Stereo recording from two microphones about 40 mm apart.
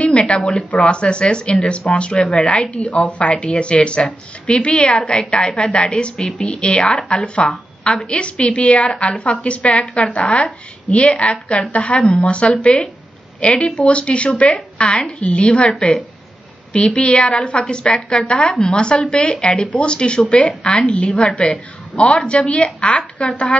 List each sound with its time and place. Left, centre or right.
0.0 s a sound: left
0.8 s a woman's voice: left
16.7 s a woman's voice: left
17.1 s speech: centre
17.4 s a woman's voice: left